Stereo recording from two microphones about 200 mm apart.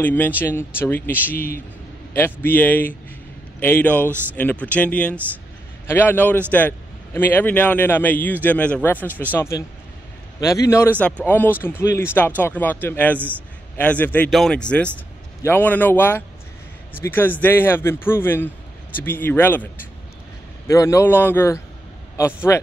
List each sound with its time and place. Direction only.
0.0 s speech: 10° left (ahead or behind)